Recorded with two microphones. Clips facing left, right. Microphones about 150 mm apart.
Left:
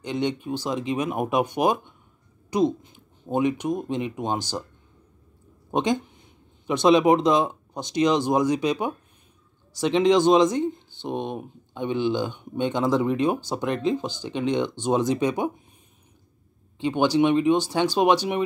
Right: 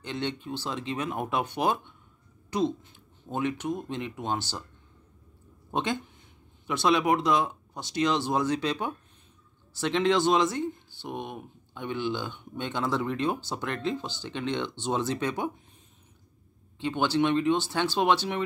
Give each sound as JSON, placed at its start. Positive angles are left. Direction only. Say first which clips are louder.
{"t": 0.0, "sound": "speech", "louder": "left 6 dB", "side_deg": 15}
{"t": 5.7, "sound": "speech", "louder": "left 6 dB", "side_deg": 15}
{"t": 16.7, "sound": "speech", "louder": "left 5 dB", "side_deg": 15}